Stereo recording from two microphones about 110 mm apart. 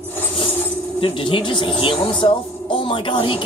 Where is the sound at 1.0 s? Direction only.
50° left (ahead or behind).